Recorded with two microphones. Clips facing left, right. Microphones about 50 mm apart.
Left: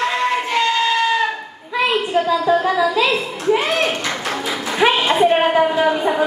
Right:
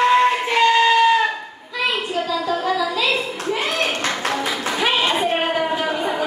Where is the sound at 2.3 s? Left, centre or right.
Left.